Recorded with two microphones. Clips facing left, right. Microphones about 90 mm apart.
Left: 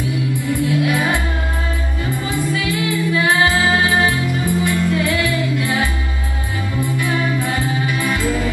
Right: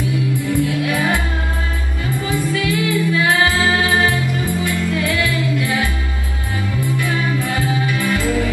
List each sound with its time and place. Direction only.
0.6 s music: 20° left (ahead or behind)
2.2 s music: 25° left (ahead or behind)
7.0 s music: 25° left (ahead or behind)